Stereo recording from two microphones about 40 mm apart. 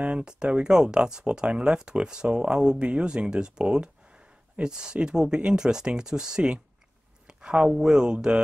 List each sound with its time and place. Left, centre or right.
0.0 s speech: right
7.2 s a sound: right
7.8 s speech: centre